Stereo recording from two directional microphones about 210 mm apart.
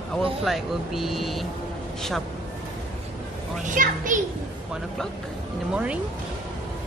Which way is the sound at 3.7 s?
40° right (ahead or behind).